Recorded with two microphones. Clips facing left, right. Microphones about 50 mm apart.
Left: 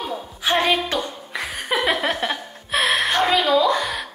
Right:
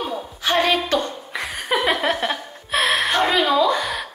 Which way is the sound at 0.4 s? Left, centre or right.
Centre.